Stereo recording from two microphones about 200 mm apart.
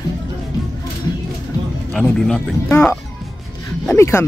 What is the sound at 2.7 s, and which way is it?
Speech, 10° left (ahead or behind).